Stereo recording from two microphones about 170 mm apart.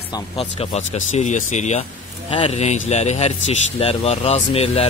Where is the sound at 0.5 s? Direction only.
40° left (ahead or behind).